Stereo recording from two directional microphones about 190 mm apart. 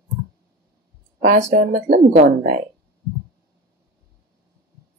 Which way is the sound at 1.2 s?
40° right (ahead or behind).